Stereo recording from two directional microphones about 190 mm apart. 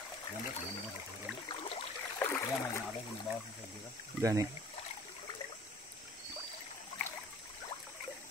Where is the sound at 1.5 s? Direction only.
30° left (ahead or behind).